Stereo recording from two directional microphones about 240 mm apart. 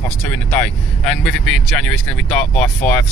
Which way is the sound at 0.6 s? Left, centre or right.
Centre.